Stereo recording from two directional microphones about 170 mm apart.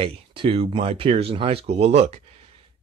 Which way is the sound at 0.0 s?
30° right (ahead or behind).